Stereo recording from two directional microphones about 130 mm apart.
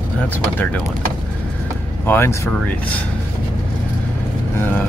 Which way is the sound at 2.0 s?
20° left (ahead or behind).